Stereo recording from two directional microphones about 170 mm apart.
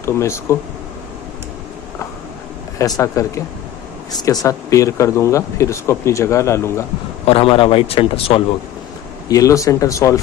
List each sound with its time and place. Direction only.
0.0 s speech: 15° left (ahead or behind)
2.8 s speech: 20° left (ahead or behind)
7.2 s a man's voice: 35° left (ahead or behind)
9.3 s speech: 20° left (ahead or behind)